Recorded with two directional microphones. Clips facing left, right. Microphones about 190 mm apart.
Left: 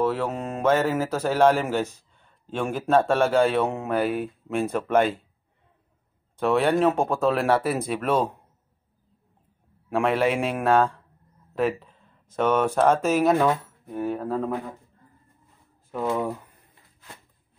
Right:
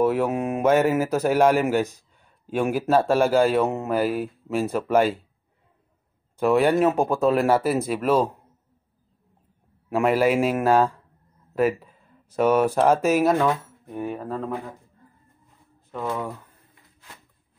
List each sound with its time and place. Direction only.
0.0 s speech: 10° right (ahead or behind)
6.4 s speech: 5° right (ahead or behind)
9.8 s speech: 5° right (ahead or behind)
11.5 s a sound: 5° right (ahead or behind)
12.4 s speech: 10° right (ahead or behind)
13.3 s speech: 5° left (ahead or behind)
13.9 s speech: 10° right (ahead or behind)
15.9 s speech: 10° left (ahead or behind)